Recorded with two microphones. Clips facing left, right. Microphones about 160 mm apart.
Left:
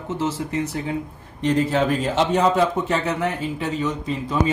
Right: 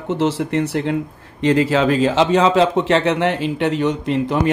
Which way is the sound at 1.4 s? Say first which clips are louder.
Right 4 dB; 90° right.